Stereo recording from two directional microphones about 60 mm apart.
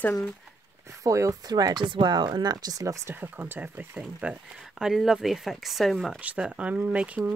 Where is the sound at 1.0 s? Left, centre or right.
Right.